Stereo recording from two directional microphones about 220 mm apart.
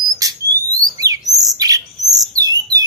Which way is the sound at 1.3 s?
15° right (ahead or behind).